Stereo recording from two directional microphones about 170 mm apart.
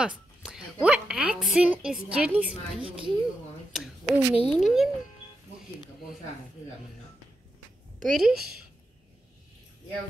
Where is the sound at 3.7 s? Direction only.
5° right (ahead or behind).